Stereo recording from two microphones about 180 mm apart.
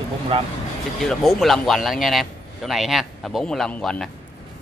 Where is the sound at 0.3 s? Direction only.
30° right (ahead or behind).